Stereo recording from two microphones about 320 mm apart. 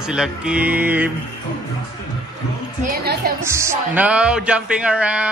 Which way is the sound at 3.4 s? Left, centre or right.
Centre.